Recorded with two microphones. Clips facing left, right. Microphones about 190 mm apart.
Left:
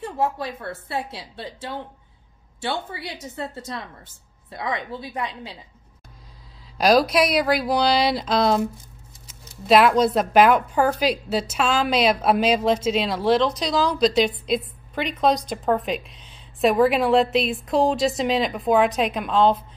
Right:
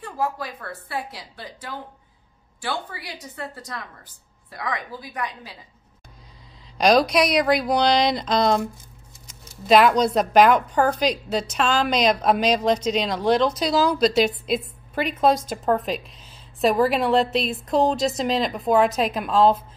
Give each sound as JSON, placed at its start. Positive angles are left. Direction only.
{"t": 0.0, "sound": "speech", "side_deg": 25}
{"t": 6.8, "sound": "a woman's voice", "side_deg": 5}